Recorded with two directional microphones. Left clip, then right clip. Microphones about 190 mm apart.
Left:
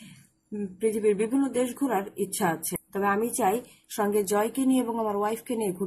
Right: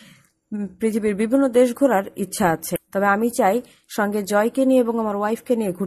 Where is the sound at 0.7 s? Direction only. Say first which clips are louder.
Right 2 dB; 40° right (ahead or behind).